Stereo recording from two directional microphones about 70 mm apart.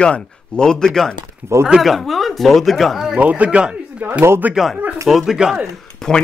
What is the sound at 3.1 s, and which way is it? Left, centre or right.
Speech, right.